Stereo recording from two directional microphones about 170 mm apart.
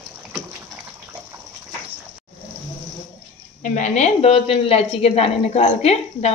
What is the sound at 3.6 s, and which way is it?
A woman's voice, 45° left (ahead or behind).